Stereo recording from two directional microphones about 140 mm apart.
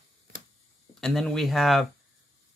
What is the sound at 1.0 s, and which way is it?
Speech, centre (ahead or behind).